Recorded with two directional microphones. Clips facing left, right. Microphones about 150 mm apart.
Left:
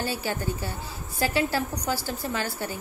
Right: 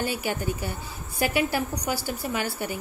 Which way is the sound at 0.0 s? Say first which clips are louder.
Right 1 dB; 15° right (ahead or behind).